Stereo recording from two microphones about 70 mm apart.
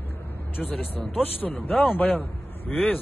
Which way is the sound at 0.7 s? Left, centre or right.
Centre.